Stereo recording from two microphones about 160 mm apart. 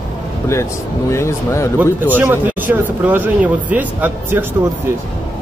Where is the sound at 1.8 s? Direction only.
10° right (ahead or behind).